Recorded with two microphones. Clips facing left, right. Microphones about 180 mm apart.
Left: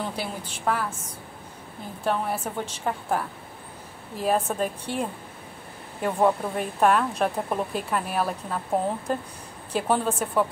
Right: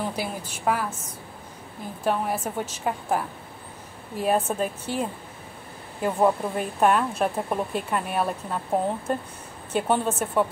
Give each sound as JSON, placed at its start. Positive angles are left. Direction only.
{"t": 0.1, "sound": "a woman's voice", "side_deg": -10}
{"t": 2.0, "sound": "a woman's voice", "side_deg": -10}
{"t": 4.2, "sound": "a woman's voice", "side_deg": -10}
{"t": 6.0, "sound": "a woman's voice", "side_deg": -5}